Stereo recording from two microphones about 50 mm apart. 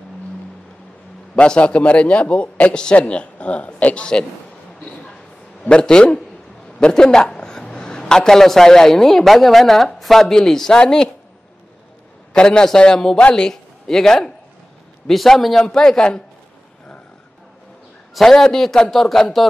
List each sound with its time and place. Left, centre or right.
1.3 s a man's voice: centre
5.6 s a man's voice: centre
12.4 s a man's voice: centre
18.1 s a man's voice: centre